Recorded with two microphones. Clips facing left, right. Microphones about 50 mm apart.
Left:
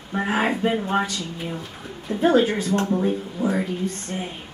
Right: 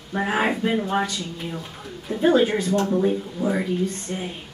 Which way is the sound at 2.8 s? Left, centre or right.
Centre.